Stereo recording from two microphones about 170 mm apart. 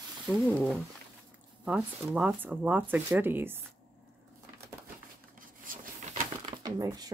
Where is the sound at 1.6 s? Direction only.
5° right (ahead or behind).